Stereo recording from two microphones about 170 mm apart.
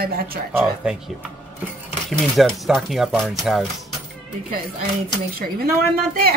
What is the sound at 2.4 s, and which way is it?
Speech, centre (ahead or behind).